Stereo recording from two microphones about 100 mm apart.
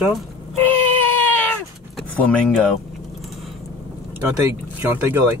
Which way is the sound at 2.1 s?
10° left (ahead or behind).